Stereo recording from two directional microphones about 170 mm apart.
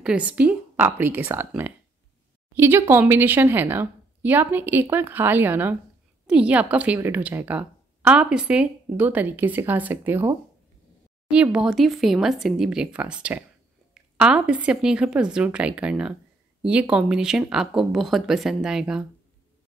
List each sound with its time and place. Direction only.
0.0 s a woman's voice: 5° right (ahead or behind)